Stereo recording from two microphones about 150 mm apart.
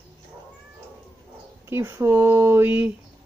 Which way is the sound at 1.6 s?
15° right (ahead or behind).